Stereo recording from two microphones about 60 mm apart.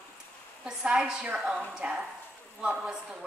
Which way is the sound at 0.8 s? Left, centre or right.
Centre.